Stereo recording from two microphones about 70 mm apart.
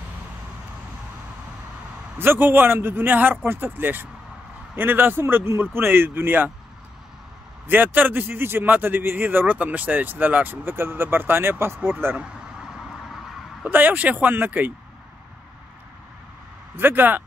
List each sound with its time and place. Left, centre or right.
2.1 s a man's voice: right
7.6 s a man's voice: right
13.7 s a man's voice: right
16.7 s a man's voice: right